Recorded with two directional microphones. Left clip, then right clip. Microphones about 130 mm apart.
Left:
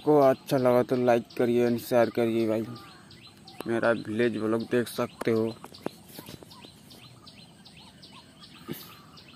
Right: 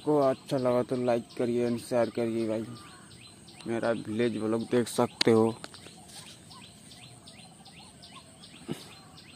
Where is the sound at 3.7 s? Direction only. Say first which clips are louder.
Left 4 dB; 10° left (ahead or behind).